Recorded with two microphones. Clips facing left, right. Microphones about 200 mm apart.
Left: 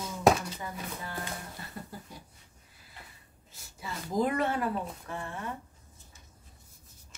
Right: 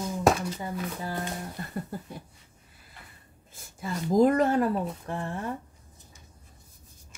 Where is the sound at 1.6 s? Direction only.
50° right (ahead or behind).